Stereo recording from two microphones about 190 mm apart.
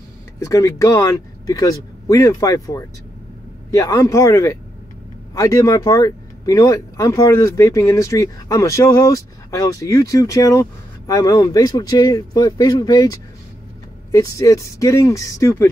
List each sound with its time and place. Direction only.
0.4 s speech: 15° left (ahead or behind)